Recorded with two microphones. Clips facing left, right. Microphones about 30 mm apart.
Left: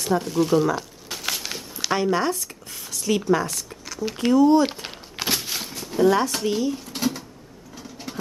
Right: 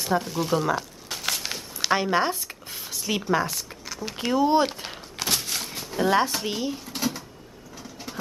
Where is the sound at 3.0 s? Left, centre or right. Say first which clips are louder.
Left 3 dB; centre.